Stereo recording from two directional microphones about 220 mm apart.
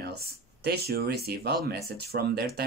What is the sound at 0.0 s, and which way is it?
Speech, 45° right (ahead or behind).